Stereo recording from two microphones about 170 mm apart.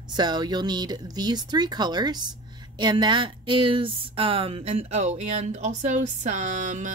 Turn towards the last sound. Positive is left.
turn(degrees=-45)  # may be behind; listen again after turning